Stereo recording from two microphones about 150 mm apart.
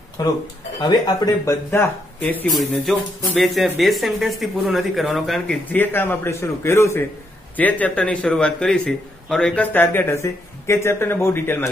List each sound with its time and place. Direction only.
0.2 s speech: 25° left (ahead or behind)
2.5 s a man's voice: centre (ahead or behind)